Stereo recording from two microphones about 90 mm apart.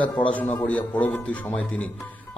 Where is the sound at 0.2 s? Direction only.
15° left (ahead or behind).